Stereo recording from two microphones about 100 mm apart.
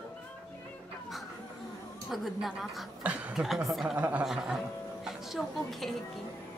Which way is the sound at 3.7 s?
Centre (ahead or behind).